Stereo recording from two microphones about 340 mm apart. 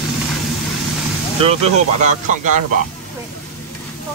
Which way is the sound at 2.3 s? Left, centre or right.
Right.